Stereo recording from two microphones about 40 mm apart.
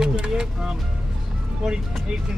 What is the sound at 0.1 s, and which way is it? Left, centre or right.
Music, centre.